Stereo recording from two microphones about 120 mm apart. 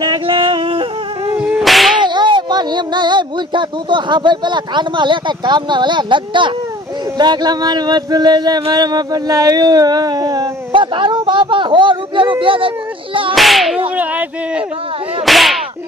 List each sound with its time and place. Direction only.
0.0 s yodeling: 40° right (ahead or behind)
1.6 s whip: centre (ahead or behind)
2.0 s speech: 40° right (ahead or behind)
7.2 s a sound: 35° right (ahead or behind)
10.7 s a sound: 45° right (ahead or behind)
13.3 s whip: centre (ahead or behind)
15.2 s whip: centre (ahead or behind)